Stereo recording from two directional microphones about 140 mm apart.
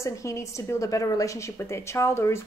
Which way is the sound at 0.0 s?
20° left (ahead or behind).